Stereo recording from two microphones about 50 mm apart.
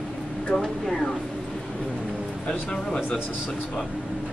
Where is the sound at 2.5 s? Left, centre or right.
Centre.